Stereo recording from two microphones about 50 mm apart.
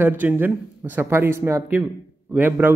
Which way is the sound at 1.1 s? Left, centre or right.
Right.